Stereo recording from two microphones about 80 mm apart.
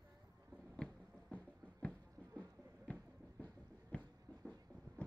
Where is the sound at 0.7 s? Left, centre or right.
Centre.